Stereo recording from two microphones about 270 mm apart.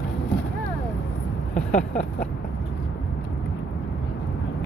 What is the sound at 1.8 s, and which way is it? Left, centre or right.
Vehicle, left.